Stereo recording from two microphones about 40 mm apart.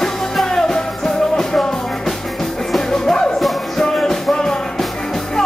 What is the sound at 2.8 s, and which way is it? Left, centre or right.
Music, centre.